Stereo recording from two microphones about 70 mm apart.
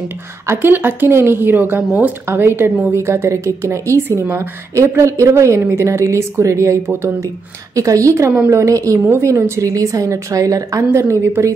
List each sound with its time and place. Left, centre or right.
0.5 s speech: right
2.2 s a woman's voice: right
7.7 s a woman's voice: right
9.0 s a woman's voice: right
10.8 s a woman's voice: right